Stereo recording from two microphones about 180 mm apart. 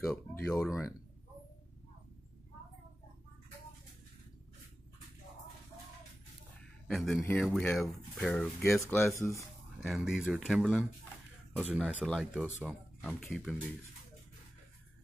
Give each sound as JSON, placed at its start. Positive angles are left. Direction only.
{"t": 0.0, "sound": "speech", "side_deg": 5}
{"t": 6.9, "sound": "speech", "side_deg": 0}
{"t": 9.1, "sound": "speech", "side_deg": 15}
{"t": 9.8, "sound": "speech", "side_deg": -5}